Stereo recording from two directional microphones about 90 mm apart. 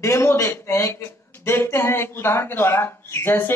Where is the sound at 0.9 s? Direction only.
25° left (ahead or behind).